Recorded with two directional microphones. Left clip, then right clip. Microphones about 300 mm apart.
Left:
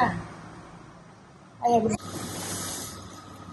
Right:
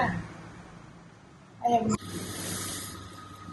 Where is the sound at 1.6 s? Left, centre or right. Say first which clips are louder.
Left 3 dB; left.